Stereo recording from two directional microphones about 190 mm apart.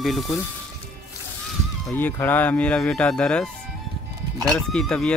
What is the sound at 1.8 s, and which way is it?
Speech, 10° left (ahead or behind).